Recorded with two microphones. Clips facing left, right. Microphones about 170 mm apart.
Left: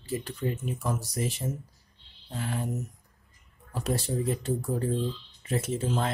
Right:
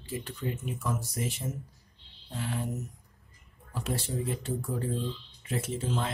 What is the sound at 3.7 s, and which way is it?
Speech, 40° left (ahead or behind).